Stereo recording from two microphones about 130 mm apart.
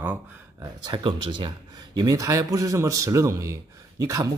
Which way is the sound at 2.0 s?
25° right (ahead or behind).